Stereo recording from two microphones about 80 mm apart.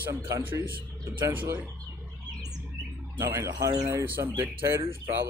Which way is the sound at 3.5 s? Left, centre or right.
Right.